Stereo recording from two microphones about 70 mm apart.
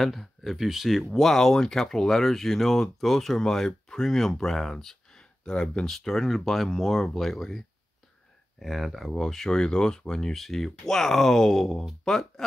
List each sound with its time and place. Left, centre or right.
0.0 s speech: centre